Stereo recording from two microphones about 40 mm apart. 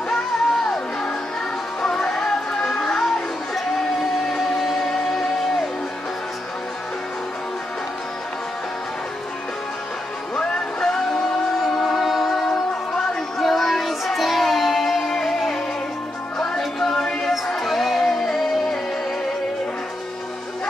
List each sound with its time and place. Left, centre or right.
0.1 s music: centre
10.3 s music: left
10.8 s music: centre
12.4 s music: centre
13.4 s music: centre
17.6 s music: centre